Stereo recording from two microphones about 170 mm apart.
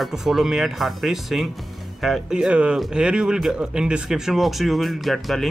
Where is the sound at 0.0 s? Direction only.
Centre (ahead or behind).